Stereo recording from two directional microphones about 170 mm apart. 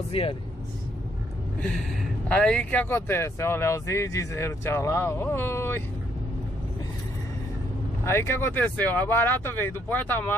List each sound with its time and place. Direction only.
0.1 s speech: 35° left (ahead or behind)
2.2 s speech: 5° left (ahead or behind)
8.0 s speech: 15° left (ahead or behind)